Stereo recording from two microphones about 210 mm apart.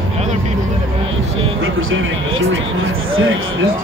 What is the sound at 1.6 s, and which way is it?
Speech, 70° right (ahead or behind).